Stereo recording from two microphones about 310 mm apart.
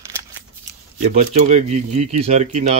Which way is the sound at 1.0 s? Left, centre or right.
Right.